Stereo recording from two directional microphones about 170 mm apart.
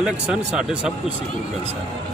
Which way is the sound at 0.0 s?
5° right (ahead or behind).